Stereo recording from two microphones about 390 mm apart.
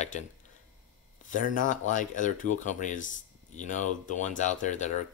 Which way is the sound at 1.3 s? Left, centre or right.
Centre.